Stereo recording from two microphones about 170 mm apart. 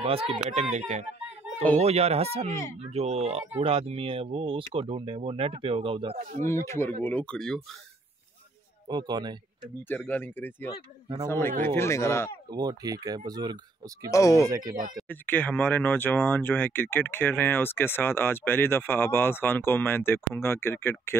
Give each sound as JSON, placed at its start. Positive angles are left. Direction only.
{"t": 0.0, "sound": "speech", "side_deg": -35}
{"t": 6.4, "sound": "speech", "side_deg": 15}
{"t": 8.8, "sound": "speech", "side_deg": -25}
{"t": 9.8, "sound": "speech", "side_deg": 10}
{"t": 12.4, "sound": "speech", "side_deg": -25}
{"t": 14.1, "sound": "speech", "side_deg": 20}
{"t": 14.4, "sound": "speech", "side_deg": -20}
{"t": 15.0, "sound": "speech", "side_deg": 10}